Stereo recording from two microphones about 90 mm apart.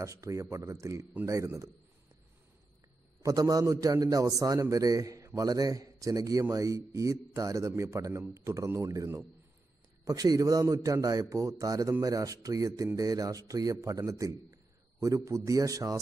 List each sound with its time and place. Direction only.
0.0 s a man's voice: 35° right (ahead or behind)
3.2 s a man's voice: 40° right (ahead or behind)